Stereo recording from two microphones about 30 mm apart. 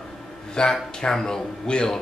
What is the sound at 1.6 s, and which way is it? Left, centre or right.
Speech, left.